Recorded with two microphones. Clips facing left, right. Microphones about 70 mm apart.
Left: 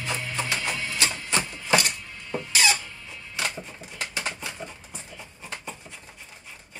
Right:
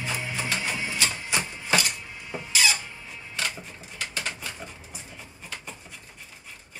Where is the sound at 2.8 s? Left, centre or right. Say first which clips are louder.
Right 1 dB; centre.